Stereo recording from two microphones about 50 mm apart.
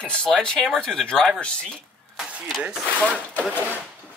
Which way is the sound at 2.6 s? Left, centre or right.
Centre.